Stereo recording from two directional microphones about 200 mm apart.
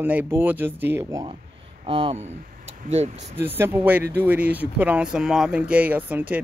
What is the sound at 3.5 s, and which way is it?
Speech, 10° right (ahead or behind).